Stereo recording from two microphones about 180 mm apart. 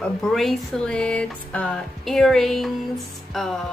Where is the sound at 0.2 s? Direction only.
Centre (ahead or behind).